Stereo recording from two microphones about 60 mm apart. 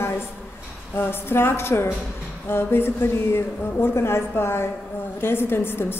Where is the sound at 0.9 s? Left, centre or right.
Left.